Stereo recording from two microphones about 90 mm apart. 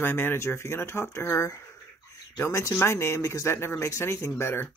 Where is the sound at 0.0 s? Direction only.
25° left (ahead or behind).